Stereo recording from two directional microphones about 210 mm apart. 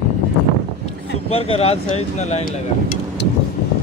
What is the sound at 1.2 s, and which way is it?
Speech, 25° left (ahead or behind).